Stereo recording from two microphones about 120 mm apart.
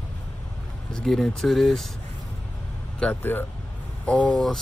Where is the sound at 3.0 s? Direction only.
15° left (ahead or behind).